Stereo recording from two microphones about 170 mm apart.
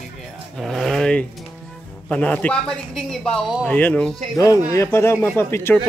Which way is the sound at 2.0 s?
5° left (ahead or behind).